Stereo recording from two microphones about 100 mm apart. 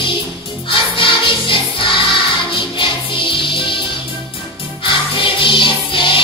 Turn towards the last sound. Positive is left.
turn(degrees=60)  # may be behind; listen again after turning